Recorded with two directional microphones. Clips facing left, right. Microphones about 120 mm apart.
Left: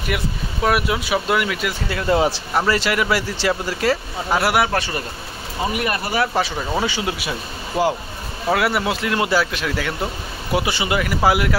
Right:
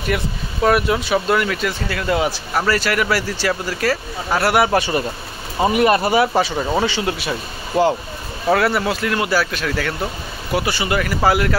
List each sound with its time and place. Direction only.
0.7 s speech: 5° left (ahead or behind)
2.0 s speech: 30° left (ahead or behind); by 4.6 s 15° left (ahead or behind)
4.7 s speech: 15° right (ahead or behind)
5.6 s speech: 25° right (ahead or behind)
6.3 s speech: centre (ahead or behind)